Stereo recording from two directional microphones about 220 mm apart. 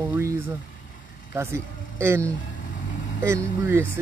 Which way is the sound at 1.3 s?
10° right (ahead or behind).